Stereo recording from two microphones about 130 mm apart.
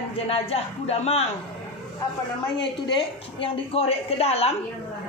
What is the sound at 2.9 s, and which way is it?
A woman's voice, 45° left (ahead or behind).